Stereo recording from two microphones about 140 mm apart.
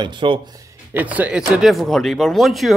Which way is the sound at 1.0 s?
10° right (ahead or behind).